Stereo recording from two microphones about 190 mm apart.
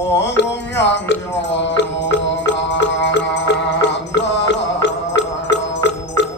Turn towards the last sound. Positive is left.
turn(degrees=70)  # may be behind; listen again after turning